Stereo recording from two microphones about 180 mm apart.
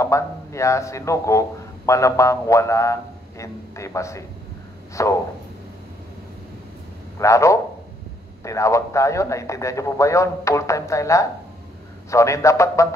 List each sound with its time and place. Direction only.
0.0 s a man's voice: 15° left (ahead or behind)
7.2 s a man's voice: 15° left (ahead or behind)